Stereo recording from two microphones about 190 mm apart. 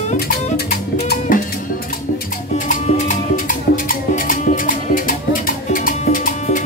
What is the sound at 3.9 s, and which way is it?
Music, 45° left (ahead or behind).